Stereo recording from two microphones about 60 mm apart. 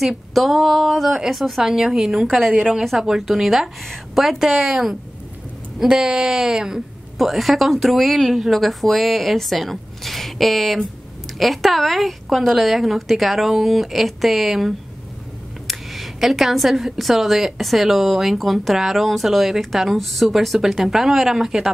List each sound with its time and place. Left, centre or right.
0.0 s a woman's voice: centre